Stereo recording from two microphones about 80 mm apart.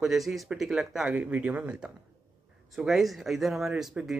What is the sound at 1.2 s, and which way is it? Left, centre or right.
Speech, centre.